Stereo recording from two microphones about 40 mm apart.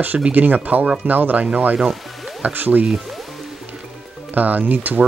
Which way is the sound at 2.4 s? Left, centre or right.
Right.